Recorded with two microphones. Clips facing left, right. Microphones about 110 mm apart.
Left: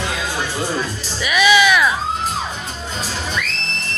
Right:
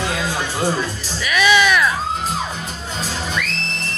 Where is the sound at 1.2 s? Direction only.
15° left (ahead or behind).